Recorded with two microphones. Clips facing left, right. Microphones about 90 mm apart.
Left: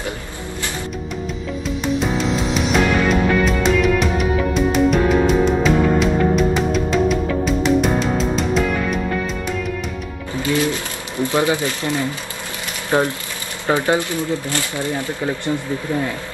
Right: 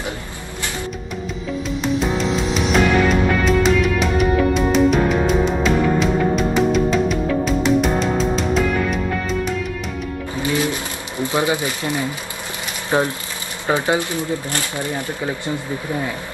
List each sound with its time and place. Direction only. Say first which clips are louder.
2.0 s music: even; centre (ahead or behind)
10.4 s pigeon: left 2 dB; 20° right (ahead or behind)
12.9 s speech: left 1 dB; 20° right (ahead or behind)
15.1 s speech: left 2 dB; 15° right (ahead or behind)